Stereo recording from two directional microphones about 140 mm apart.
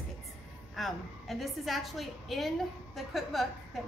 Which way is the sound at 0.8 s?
Centre (ahead or behind).